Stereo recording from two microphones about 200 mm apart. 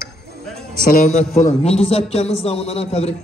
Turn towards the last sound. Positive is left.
turn(degrees=30)  # may be behind; listen again after turning